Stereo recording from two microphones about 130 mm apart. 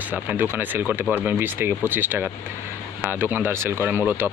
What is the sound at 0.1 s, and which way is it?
Speech, 15° right (ahead or behind).